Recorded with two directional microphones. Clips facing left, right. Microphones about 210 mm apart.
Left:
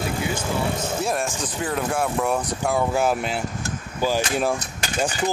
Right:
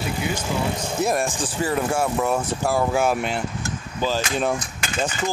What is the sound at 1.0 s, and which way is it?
Speech, 15° right (ahead or behind).